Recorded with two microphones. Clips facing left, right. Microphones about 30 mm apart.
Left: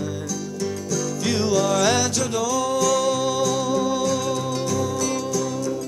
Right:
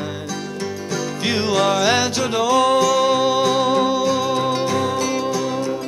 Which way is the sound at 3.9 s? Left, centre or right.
Right.